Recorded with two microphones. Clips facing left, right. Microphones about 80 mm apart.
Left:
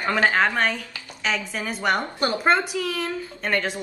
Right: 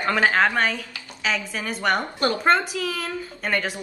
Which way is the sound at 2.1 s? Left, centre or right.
Centre.